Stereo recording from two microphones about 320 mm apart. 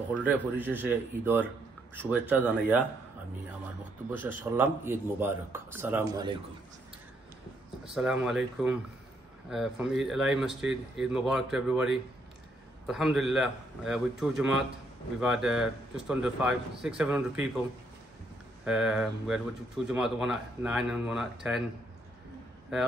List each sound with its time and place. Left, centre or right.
0.1 s speech: centre
4.1 s speech: centre
7.9 s speech: centre
18.7 s speech: centre